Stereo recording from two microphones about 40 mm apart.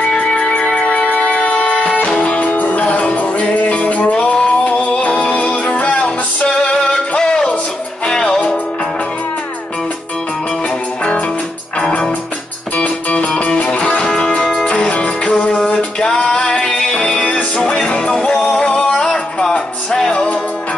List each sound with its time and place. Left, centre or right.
0.2 s music: left
0.8 s a sound: left
2.4 s music: left
4.0 s music: centre
4.6 s music: left
6.9 s music: centre
12.7 s music: left
15.5 s music: centre; by 17.5 s left
17.6 s music: centre